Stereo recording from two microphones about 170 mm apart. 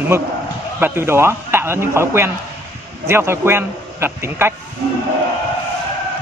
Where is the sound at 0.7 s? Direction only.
15° right (ahead or behind).